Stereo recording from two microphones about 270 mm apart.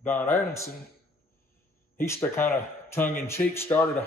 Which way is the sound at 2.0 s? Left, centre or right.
Centre.